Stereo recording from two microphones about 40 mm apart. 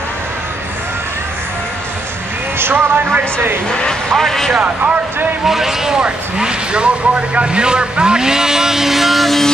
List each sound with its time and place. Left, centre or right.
2.7 s speech: right
4.1 s speech: centre
4.6 s speech: right
5.4 s speech: centre
6.3 s speech: right; by 9.4 s centre